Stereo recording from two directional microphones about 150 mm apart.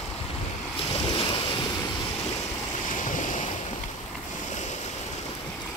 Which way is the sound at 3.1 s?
55° left (ahead or behind).